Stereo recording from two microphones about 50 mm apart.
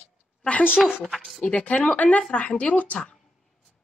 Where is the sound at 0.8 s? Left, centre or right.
Centre.